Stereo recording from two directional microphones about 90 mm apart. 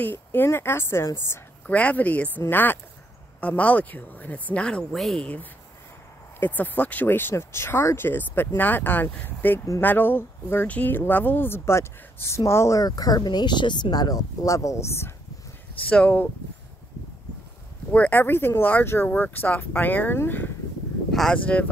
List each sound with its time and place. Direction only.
0.0 s speech: 20° left (ahead or behind)
1.7 s speech: 15° left (ahead or behind)
6.4 s speech: 20° left (ahead or behind)
12.8 s speech: 45° left (ahead or behind); by 15.1 s 30° left (ahead or behind)
15.9 s speech: 15° left (ahead or behind)
17.9 s speech: 20° left (ahead or behind)
21.1 s a sound: 5° left (ahead or behind)